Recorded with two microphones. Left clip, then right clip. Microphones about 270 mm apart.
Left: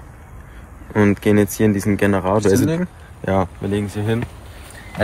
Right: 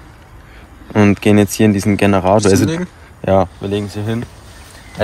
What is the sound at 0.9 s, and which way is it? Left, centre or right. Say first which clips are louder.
Speech: right 4 dB; right.